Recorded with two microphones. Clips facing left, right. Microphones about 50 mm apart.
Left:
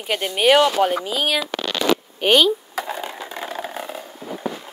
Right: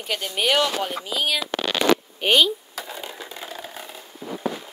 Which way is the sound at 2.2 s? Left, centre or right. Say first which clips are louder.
Left 3 dB; left.